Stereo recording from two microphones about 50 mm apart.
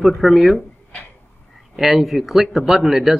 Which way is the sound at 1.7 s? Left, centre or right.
Centre.